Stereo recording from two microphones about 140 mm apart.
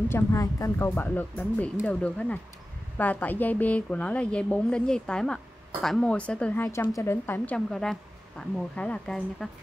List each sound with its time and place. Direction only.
0.1 s a woman's voice: 20° left (ahead or behind); by 9.5 s 5° left (ahead or behind)